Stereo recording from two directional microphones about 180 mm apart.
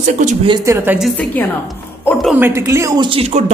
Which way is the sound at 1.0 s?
5° left (ahead or behind).